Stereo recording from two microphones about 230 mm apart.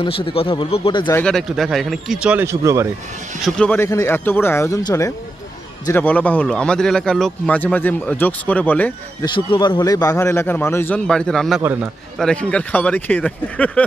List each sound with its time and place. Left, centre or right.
0.0 s speech: left
1.2 s speech: centre
3.4 s speech: centre
9.2 s speech: centre
11.6 s a man's voice: centre
12.2 s speech: centre